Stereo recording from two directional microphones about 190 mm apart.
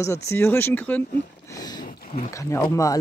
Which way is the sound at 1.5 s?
20° left (ahead or behind).